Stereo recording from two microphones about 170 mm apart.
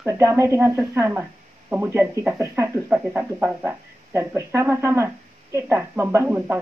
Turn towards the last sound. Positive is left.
turn(degrees=-10)  # may be behind; listen again after turning